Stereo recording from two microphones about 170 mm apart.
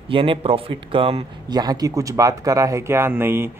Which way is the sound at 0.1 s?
30° right (ahead or behind).